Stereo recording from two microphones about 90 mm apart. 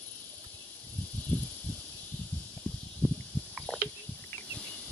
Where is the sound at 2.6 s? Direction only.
15° left (ahead or behind).